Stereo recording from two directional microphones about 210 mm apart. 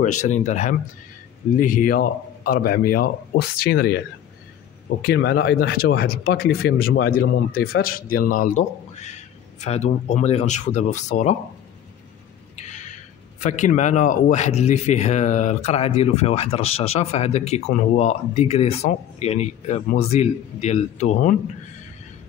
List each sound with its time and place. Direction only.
0.2 s speech: 35° left (ahead or behind)
12.5 s a sound: 35° left (ahead or behind)
13.4 s speech: 35° left (ahead or behind)